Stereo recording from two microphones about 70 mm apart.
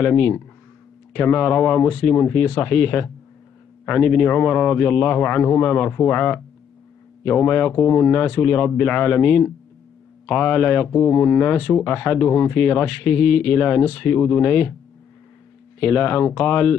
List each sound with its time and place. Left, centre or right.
0.0 s speech: left
15.8 s speech: left